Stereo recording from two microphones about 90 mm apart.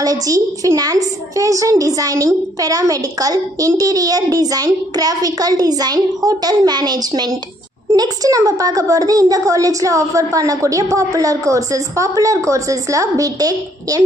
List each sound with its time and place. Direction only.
0.0 s a woman's voice: 40° right (ahead or behind)